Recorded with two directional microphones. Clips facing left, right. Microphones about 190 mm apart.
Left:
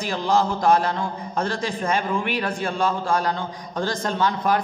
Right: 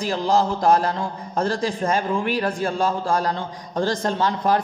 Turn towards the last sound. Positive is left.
turn(degrees=-35)  # may be behind; listen again after turning